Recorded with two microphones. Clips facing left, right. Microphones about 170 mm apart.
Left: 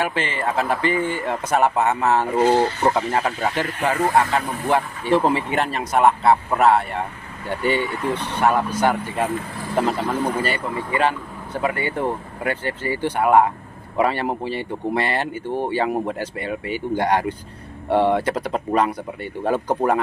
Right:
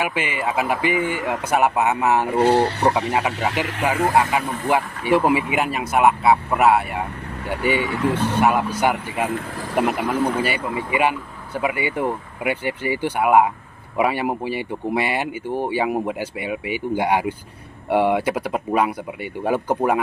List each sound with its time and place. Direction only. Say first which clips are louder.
0.0 s speech: even; 10° right (ahead or behind)
2.3 s speech: right 1 dB; 65° right (ahead or behind)
2.8 s speech: even; 10° right (ahead or behind)
7.8 s speech: right 3 dB; 80° right
8.1 s speech: right 1 dB; 10° right (ahead or behind)